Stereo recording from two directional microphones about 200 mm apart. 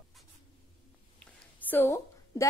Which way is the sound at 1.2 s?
10° left (ahead or behind).